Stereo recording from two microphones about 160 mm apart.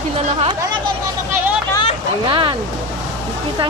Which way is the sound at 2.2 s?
30° right (ahead or behind).